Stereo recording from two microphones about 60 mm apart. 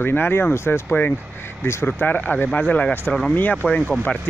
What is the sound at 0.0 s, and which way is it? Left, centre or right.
Speech, left.